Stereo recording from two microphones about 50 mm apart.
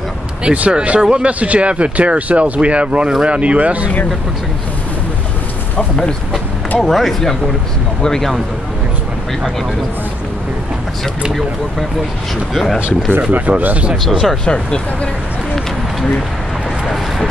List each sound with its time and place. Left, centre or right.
0.4 s speech: right
6.8 s speech: centre
13.3 s speech: right
14.0 s speech: centre
14.4 s speech: centre
16.8 s a sound: centre